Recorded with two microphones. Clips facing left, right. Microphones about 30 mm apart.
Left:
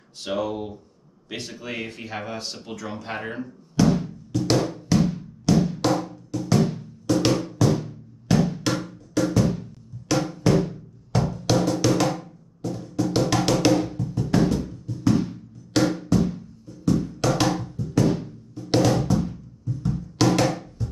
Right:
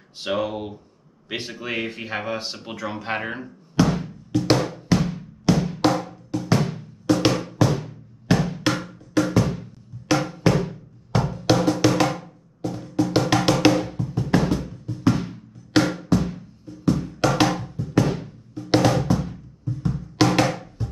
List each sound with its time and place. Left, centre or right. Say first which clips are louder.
0.2 s speech: right 2 dB; right
4.6 s drum: even; right
12.6 s music: right 2 dB; right
17.6 s drum: right 1 dB; right
19.0 s music: even; centre